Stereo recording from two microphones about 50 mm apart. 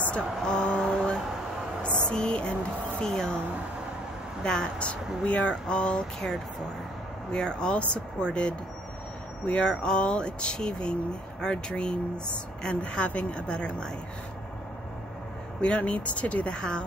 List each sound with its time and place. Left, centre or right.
0.1 s a sound: left
3.0 s speech: centre
4.4 s speech: centre
15.6 s speech: left